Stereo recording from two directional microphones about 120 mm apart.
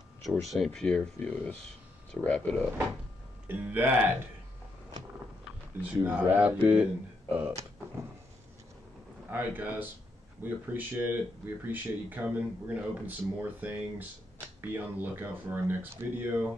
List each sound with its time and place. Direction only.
0.2 s speech: centre (ahead or behind)
3.4 s speech: 15° right (ahead or behind)
5.9 s speech: 15° right (ahead or behind)
9.3 s speech: 15° right (ahead or behind)